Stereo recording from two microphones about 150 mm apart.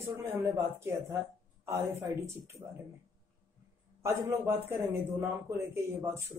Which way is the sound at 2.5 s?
Centre (ahead or behind).